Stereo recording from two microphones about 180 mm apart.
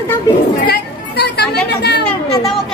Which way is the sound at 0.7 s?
65° left (ahead or behind).